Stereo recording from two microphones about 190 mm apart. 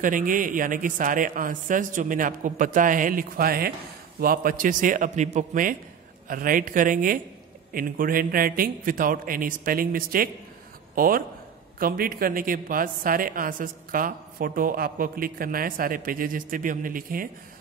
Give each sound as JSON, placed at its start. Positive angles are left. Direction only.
{"t": 0.0, "sound": "a woman's voice", "side_deg": -45}